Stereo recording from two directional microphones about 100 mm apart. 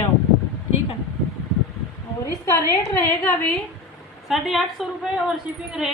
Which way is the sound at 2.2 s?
30° left (ahead or behind).